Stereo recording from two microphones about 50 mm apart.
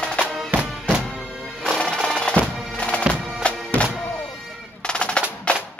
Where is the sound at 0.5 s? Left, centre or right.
Right.